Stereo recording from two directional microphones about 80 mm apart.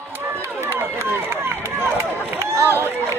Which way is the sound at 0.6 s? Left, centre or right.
Right.